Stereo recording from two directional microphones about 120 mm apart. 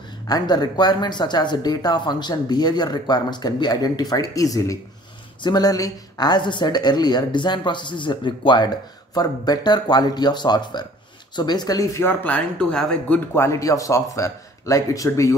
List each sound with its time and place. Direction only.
0.3 s a woman's voice: 35° left (ahead or behind); by 13.2 s 10° left (ahead or behind)
13.3 s speech: 25° left (ahead or behind)